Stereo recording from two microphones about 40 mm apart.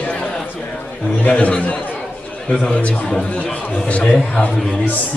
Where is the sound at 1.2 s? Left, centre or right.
Left.